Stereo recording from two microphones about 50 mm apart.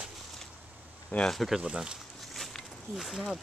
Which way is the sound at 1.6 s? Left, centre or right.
Centre.